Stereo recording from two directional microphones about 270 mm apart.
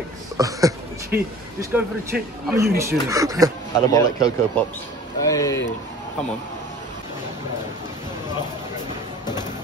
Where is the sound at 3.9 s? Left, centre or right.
Centre.